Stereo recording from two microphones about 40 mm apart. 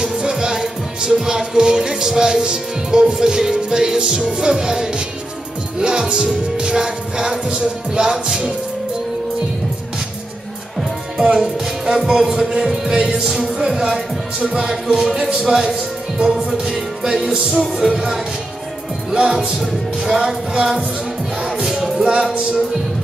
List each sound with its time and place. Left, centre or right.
0.0 s music: centre
3.5 s speech: centre
6.0 s music: right
11.3 s speech: centre
16.2 s music: right
16.4 s speech: centre
21.4 s music: centre
22.0 s music: right